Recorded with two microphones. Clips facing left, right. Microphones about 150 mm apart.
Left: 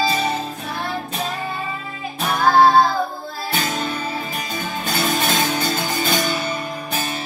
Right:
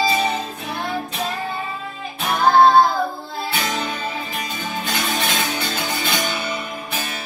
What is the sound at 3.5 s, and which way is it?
Music, 45° left (ahead or behind).